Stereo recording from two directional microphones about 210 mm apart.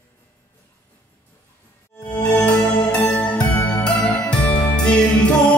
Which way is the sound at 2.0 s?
5° left (ahead or behind).